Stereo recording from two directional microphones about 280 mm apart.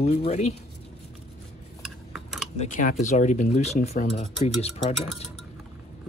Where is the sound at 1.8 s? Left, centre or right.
Centre.